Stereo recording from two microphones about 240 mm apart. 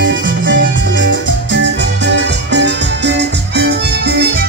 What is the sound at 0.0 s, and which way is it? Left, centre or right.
Music, right.